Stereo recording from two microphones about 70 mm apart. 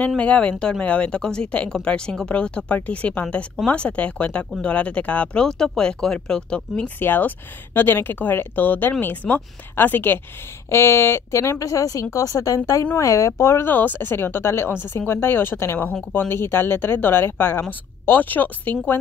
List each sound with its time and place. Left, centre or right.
0.2 s speech: centre
7.0 s speech: left
13.7 s a woman's voice: left